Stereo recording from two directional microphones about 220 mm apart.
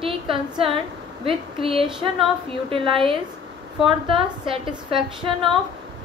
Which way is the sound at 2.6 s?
25° right (ahead or behind).